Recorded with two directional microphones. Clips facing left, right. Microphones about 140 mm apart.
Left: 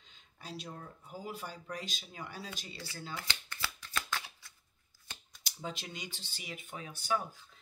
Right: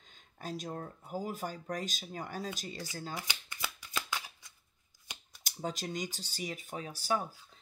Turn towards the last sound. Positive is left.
turn(degrees=-35)  # may be behind; listen again after turning